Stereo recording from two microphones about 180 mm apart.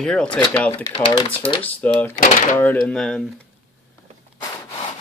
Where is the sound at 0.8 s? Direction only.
30° left (ahead or behind).